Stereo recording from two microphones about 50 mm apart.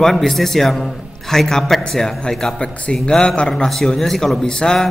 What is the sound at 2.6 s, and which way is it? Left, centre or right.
A man's voice, left.